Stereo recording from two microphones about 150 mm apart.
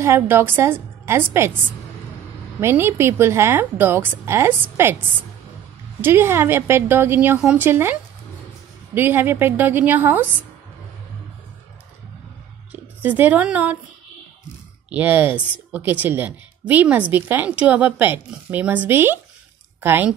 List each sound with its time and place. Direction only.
0.0 s speech: 15° right (ahead or behind)
2.6 s speech: 15° right (ahead or behind)
5.9 s speech: 15° right (ahead or behind)
13.0 s speech: 10° right (ahead or behind)
14.9 s speech: 10° right (ahead or behind)